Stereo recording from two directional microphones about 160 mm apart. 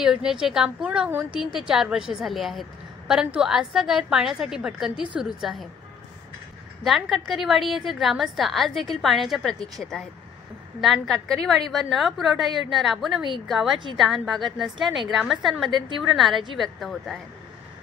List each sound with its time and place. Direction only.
0.0 s a woman's voice: 5° right (ahead or behind)
6.8 s a woman's voice: centre (ahead or behind)